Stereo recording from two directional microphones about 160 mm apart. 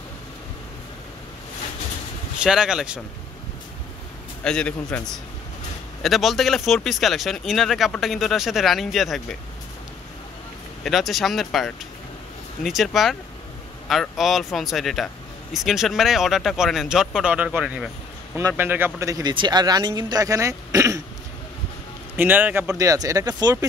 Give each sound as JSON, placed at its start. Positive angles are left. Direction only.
{"t": 2.4, "sound": "speech", "side_deg": -5}
{"t": 4.5, "sound": "speech", "side_deg": 5}
{"t": 10.8, "sound": "speech", "side_deg": 0}
{"t": 22.1, "sound": "speech", "side_deg": -10}